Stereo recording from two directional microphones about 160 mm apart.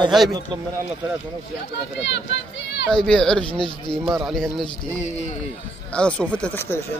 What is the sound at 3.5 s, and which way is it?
Speech, 30° left (ahead or behind).